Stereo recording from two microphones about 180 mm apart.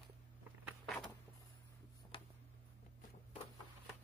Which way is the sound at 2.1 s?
30° left (ahead or behind).